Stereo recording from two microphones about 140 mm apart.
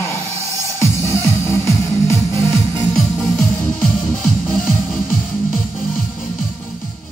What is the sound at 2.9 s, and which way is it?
Music, 5° left (ahead or behind).